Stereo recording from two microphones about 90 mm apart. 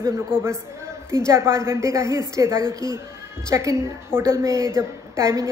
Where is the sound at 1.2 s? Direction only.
30° right (ahead or behind).